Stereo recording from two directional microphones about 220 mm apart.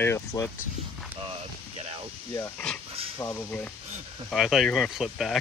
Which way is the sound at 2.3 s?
10° left (ahead or behind).